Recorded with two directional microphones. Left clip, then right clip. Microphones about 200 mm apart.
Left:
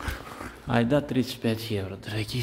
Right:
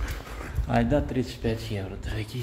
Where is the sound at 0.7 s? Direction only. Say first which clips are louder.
Even; 25° left (ahead or behind).